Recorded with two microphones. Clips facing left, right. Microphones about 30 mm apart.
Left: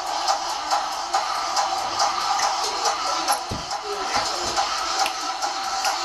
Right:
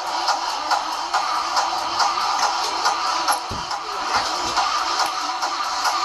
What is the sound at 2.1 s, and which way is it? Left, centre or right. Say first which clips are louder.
Music: right 2 dB; right.